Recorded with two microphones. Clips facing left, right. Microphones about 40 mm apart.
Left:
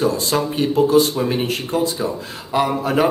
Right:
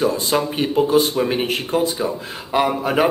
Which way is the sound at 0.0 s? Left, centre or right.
Centre.